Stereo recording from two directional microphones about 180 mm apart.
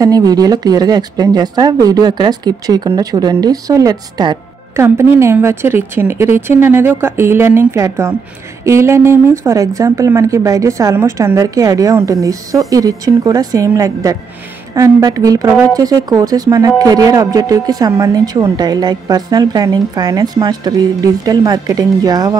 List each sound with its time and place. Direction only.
0.0 s a woman's voice: 20° right (ahead or behind)